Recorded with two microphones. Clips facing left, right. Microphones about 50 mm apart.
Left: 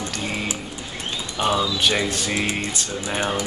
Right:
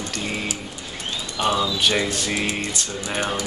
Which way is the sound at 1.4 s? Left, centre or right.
Centre.